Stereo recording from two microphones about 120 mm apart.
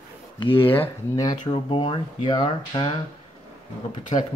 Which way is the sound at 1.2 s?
40° left (ahead or behind).